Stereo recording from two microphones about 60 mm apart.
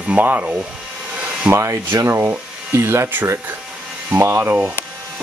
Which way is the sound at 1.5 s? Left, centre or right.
Right.